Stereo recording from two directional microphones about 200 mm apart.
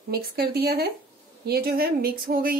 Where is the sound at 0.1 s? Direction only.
50° right (ahead or behind).